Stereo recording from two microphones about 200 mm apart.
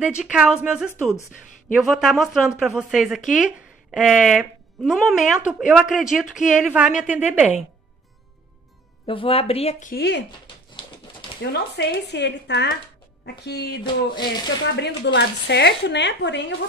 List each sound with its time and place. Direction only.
0.2 s a woman's voice: 5° right (ahead or behind)
9.0 s speech: 25° left (ahead or behind); by 10.2 s 55° left (ahead or behind)
11.7 s speech: 55° left (ahead or behind)
14.1 s speech: 20° left (ahead or behind)
14.8 s speech: 60° left (ahead or behind)